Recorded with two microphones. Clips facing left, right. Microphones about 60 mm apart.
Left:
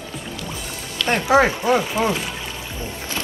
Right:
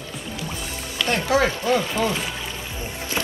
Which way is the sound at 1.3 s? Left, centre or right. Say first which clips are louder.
Left 5 dB; left.